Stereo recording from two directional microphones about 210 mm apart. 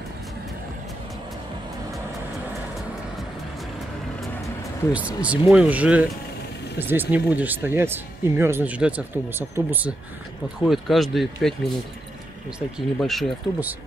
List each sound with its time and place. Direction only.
4.9 s speech: 5° right (ahead or behind)
12.5 s speech: centre (ahead or behind)